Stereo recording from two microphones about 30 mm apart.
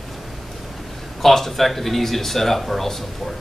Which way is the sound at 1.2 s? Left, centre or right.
Centre.